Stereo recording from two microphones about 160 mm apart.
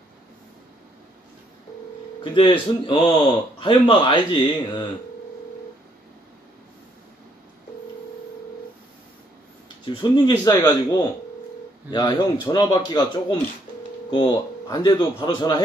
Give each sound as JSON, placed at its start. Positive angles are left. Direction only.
{"t": 2.3, "sound": "speech", "side_deg": 35}
{"t": 9.8, "sound": "speech", "side_deg": 30}
{"t": 10.5, "sound": "speech", "side_deg": 15}
{"t": 11.9, "sound": "speech", "side_deg": 30}
{"t": 14.7, "sound": "speech", "side_deg": 30}